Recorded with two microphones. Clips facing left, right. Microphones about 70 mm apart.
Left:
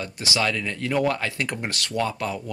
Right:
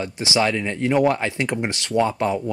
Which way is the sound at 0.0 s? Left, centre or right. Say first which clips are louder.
Right 4 dB; right.